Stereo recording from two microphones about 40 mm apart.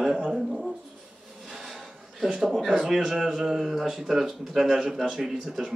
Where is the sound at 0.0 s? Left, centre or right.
Centre.